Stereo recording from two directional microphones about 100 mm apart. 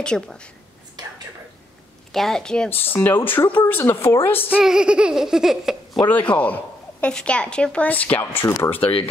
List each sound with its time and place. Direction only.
0.0 s a woman's voice: 10° left (ahead or behind)
1.0 s a sound: 45° right (ahead or behind)
2.1 s a woman's voice: 5° left (ahead or behind)
2.7 s speech: 20° left (ahead or behind)
4.5 s a sound: 10° right (ahead or behind)
6.0 s a woman's voice: 15° left (ahead or behind)